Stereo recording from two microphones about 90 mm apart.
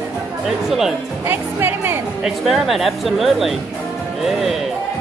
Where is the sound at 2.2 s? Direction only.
5° right (ahead or behind).